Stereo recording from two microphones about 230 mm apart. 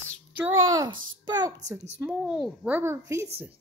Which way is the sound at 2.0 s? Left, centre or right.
Centre.